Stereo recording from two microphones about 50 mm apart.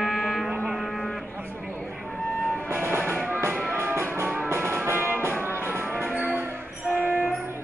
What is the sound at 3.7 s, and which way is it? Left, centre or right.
Music, right.